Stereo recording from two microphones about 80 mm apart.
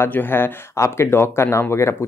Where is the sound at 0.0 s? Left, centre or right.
Left.